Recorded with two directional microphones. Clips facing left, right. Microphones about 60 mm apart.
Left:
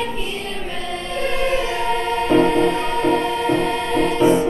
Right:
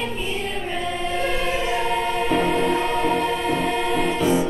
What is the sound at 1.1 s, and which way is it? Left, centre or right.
Music, centre.